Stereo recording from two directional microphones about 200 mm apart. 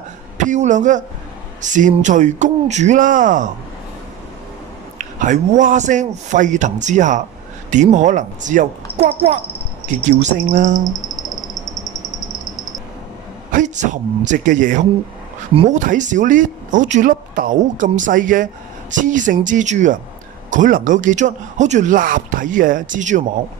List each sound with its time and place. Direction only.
0.4 s speech: 40° right (ahead or behind)
4.9 s speech: 40° right (ahead or behind)
10.0 s speech: 35° right (ahead or behind)
10.8 s speech: 20° right (ahead or behind)
13.5 s speech: 40° right (ahead or behind)
15.5 s speech: 30° right (ahead or behind)
15.8 s speech: 40° right (ahead or behind)